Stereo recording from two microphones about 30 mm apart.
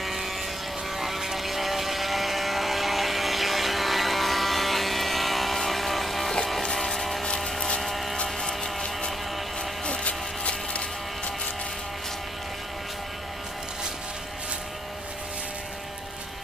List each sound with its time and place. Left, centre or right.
0.0 s vehicle: centre
6.6 s vehicle: centre
7.8 s a sound: centre
8.4 s music: centre
9.8 s music: left